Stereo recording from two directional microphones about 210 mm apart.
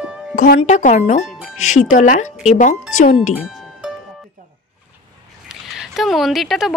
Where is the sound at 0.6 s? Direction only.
35° left (ahead or behind).